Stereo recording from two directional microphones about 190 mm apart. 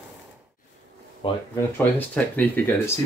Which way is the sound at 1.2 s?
25° left (ahead or behind).